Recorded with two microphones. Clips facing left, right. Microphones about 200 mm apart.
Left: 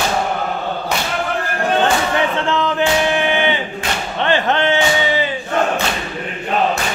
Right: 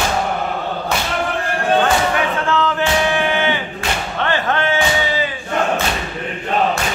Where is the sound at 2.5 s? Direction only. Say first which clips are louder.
Even; 20° left (ahead or behind).